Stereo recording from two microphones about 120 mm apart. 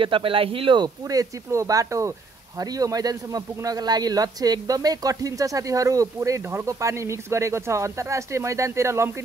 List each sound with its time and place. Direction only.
0.0 s a man's voice: 45° right (ahead or behind); by 9.1 s 25° right (ahead or behind)